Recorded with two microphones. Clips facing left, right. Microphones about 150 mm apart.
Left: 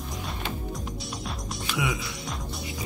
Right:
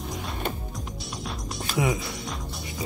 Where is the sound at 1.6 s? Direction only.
40° right (ahead or behind).